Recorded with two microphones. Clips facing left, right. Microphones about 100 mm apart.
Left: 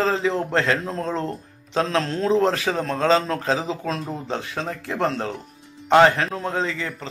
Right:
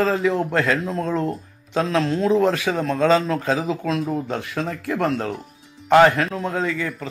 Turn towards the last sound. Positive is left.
turn(degrees=30)  # may be behind; listen again after turning